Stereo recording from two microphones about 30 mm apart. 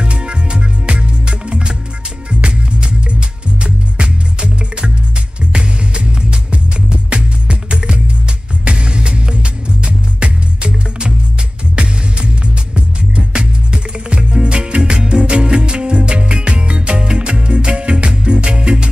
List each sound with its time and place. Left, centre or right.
0.0 s music: right